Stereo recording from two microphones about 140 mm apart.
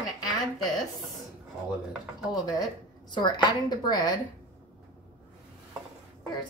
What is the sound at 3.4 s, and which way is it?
Speech, 30° left (ahead or behind).